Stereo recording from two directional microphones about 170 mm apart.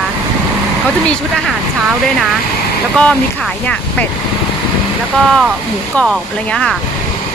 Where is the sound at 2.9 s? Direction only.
5° left (ahead or behind).